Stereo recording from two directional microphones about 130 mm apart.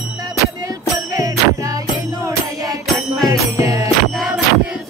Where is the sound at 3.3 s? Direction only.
25° right (ahead or behind).